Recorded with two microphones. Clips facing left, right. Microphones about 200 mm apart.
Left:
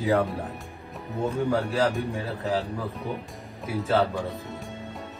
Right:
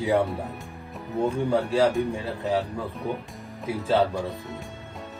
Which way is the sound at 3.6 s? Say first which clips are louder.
Right 1 dB; 15° right (ahead or behind).